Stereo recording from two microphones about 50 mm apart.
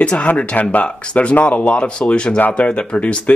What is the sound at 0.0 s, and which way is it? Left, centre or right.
Speech, left.